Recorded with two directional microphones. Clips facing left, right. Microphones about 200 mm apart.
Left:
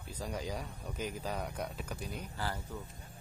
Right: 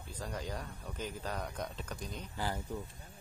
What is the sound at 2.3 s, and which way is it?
Speech, 15° right (ahead or behind).